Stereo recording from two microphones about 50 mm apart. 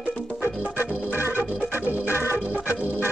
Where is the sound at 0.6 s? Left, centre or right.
Right.